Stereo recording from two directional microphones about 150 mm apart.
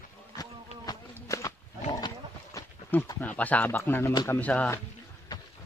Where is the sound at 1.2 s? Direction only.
20° left (ahead or behind).